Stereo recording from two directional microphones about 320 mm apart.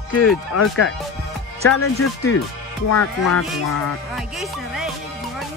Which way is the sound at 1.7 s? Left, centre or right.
Left.